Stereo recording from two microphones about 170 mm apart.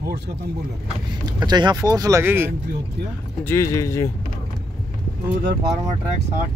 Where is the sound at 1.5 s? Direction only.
25° right (ahead or behind).